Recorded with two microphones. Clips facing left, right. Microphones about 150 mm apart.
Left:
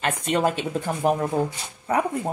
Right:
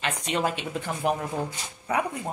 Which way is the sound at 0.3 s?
45° left (ahead or behind).